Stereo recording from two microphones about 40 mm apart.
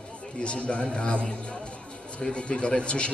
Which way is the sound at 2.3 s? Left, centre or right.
Left.